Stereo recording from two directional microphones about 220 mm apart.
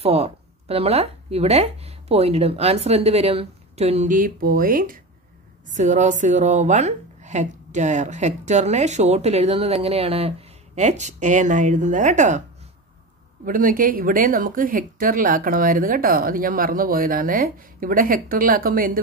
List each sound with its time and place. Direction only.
0.0 s a woman's voice: 25° right (ahead or behind)
13.5 s a woman's voice: 40° right (ahead or behind)